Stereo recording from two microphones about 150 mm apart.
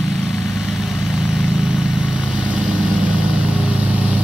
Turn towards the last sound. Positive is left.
turn(degrees=-10)  # may be behind; listen again after turning